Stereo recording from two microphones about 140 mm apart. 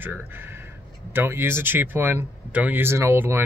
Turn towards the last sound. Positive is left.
turn(degrees=-15)  # may be behind; listen again after turning